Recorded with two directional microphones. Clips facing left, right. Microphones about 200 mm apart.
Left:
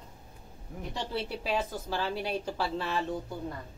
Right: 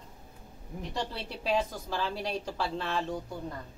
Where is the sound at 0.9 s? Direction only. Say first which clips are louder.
Left 2 dB; centre (ahead or behind).